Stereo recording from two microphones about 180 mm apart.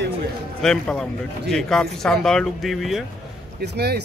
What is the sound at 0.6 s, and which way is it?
Speech, 5° left (ahead or behind).